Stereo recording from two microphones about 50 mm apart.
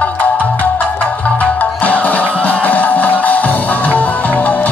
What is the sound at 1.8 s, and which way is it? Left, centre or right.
Music, left.